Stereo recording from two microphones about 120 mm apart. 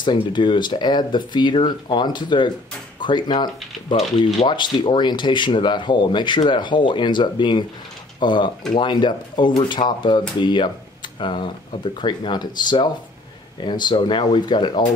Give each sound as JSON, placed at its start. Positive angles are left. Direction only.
{"t": 0.0, "sound": "speech", "side_deg": 40}